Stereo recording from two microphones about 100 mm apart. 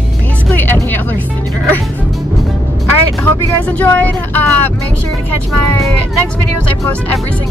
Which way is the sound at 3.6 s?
15° left (ahead or behind).